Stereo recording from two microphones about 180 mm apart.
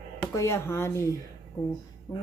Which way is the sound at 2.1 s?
20° left (ahead or behind).